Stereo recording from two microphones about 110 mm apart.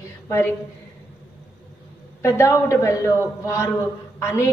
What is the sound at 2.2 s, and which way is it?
A woman's voice, 25° left (ahead or behind).